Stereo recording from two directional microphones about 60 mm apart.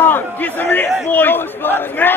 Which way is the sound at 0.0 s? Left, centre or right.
Left.